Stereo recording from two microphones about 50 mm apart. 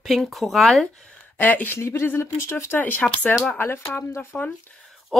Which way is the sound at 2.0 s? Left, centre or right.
Left.